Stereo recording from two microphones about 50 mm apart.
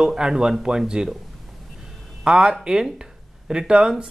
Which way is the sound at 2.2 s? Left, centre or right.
Centre.